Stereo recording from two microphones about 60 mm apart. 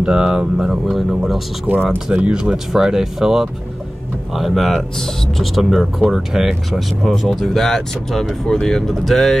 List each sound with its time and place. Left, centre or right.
0.0 s speech: centre
1.7 s speech: right
2.5 s speech: centre